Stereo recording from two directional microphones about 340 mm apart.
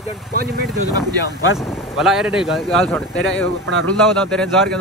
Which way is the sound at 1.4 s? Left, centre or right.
Centre.